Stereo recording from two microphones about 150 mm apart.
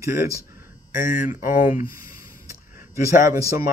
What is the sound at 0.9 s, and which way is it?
Speech, 60° left (ahead or behind).